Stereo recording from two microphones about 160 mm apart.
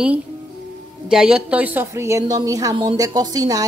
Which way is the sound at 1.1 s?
5° right (ahead or behind).